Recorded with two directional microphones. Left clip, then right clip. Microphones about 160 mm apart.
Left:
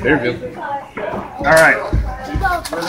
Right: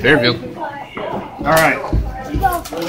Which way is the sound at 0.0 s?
35° right (ahead or behind).